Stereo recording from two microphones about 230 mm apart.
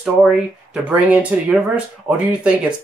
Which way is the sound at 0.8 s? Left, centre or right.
Centre.